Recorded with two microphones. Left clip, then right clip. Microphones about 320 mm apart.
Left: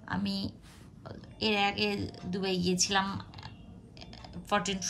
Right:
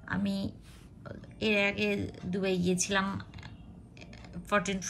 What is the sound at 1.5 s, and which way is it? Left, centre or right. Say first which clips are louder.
A woman's voice: right 1 dB; centre.